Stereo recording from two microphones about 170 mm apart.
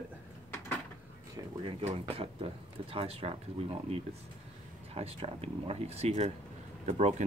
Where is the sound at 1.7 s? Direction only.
35° right (ahead or behind).